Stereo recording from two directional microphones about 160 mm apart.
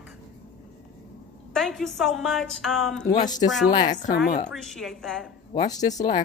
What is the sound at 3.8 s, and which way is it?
Speech, 50° left (ahead or behind).